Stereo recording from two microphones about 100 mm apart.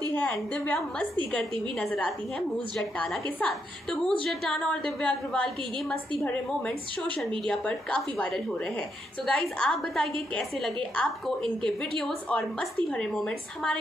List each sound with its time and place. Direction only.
0.1 s a woman's voice: 20° left (ahead or behind)
3.3 s a woman's voice: 15° left (ahead or behind)